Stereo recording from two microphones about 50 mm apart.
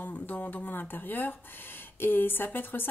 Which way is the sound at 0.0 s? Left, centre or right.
Left.